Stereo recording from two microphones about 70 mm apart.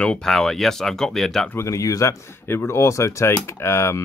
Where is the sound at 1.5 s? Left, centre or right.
Left.